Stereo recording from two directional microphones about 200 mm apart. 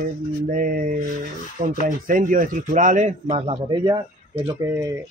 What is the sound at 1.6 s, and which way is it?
Speech, 45° right (ahead or behind).